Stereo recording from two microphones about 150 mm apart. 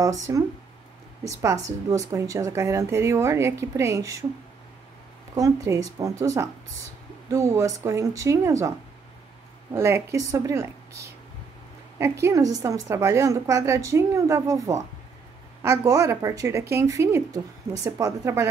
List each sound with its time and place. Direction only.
0.0 s speech: 20° right (ahead or behind)
5.3 s speech: 20° right (ahead or behind)